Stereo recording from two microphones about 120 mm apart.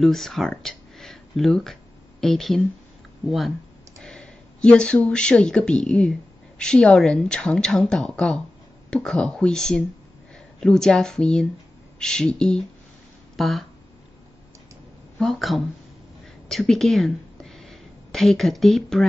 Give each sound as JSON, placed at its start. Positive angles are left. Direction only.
{"t": 0.0, "sound": "a woman's voice", "side_deg": 0}
{"t": 15.1, "sound": "a woman's voice", "side_deg": 0}